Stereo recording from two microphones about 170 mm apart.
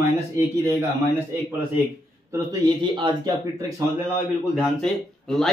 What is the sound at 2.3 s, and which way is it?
Speech, 30° right (ahead or behind).